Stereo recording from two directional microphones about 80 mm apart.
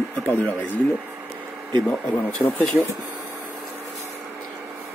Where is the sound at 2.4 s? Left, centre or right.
Left.